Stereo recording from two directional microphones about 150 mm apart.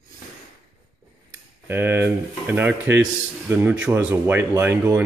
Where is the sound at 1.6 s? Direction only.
15° right (ahead or behind).